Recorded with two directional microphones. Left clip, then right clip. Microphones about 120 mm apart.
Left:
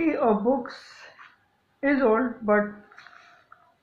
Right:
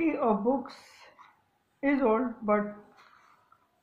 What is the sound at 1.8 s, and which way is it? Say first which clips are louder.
Speech: left 4 dB; 10° right (ahead or behind).